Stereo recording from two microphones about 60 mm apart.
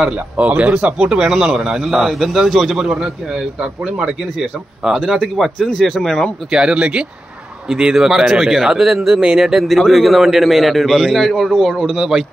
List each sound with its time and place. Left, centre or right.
0.0 s speech: right
0.9 s a man's voice: centre
3.5 s a man's voice: centre
6.5 s a man's voice: centre